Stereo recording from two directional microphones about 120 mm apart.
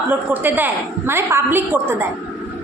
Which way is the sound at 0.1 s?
15° right (ahead or behind).